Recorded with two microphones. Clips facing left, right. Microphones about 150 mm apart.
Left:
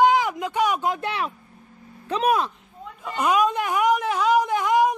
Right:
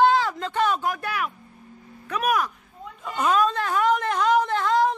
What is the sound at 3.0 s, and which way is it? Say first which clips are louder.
Speech: left 1 dB; 5° left (ahead or behind).